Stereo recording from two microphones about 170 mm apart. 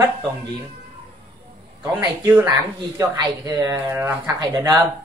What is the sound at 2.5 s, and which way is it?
Speech, 20° right (ahead or behind).